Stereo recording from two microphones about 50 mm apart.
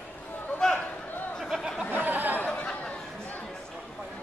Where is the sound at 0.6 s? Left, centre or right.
Centre.